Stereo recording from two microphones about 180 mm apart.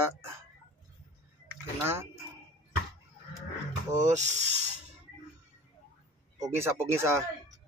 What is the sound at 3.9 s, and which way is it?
Speech, 40° right (ahead or behind).